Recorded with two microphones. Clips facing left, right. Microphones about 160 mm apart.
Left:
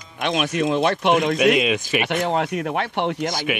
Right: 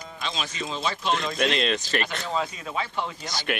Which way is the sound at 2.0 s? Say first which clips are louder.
Left 7 dB; 70° left (ahead or behind).